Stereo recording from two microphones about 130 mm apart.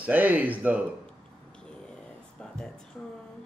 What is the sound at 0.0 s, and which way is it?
Speech, 15° right (ahead or behind).